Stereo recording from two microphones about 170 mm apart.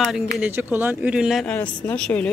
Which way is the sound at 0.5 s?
10° right (ahead or behind).